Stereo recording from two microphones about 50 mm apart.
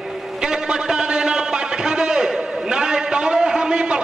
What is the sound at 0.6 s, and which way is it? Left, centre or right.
A man's voice, centre.